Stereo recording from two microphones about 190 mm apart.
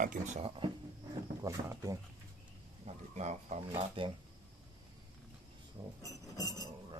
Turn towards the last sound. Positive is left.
turn(degrees=20)  # may be behind; listen again after turning